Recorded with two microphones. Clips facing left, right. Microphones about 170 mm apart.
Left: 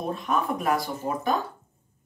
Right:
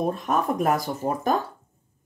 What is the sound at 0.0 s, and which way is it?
Speech, 45° right (ahead or behind).